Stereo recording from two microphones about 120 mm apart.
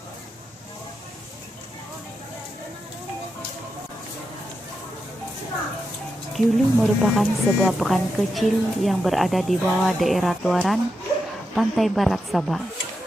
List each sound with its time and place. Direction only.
6.3 s speech: centre (ahead or behind)